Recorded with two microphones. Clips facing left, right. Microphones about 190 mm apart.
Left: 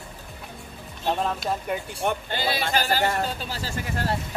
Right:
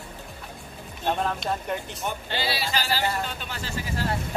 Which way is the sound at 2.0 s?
50° left (ahead or behind).